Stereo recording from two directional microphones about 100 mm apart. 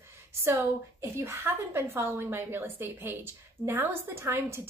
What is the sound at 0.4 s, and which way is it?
A woman's voice, 25° right (ahead or behind).